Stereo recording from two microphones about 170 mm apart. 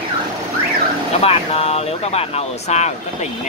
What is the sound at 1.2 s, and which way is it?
Speech, 35° left (ahead or behind).